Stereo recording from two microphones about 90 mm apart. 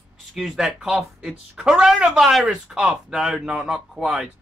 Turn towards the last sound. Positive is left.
turn(degrees=-5)  # may be behind; listen again after turning